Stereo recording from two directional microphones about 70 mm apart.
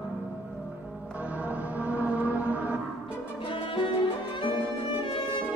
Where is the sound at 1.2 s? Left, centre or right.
Centre.